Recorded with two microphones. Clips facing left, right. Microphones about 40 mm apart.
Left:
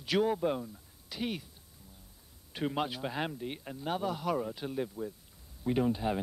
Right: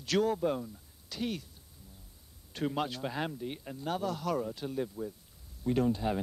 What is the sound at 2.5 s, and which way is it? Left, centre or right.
Speech, centre.